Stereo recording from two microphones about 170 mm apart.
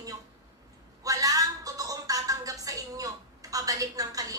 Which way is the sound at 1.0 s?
20° right (ahead or behind).